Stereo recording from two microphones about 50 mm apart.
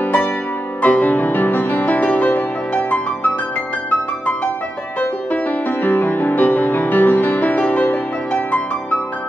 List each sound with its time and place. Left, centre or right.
0.0 s music: left
5.3 s music: left